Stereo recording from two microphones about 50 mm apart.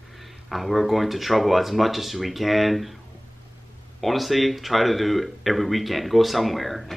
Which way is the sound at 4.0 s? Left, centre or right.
Centre.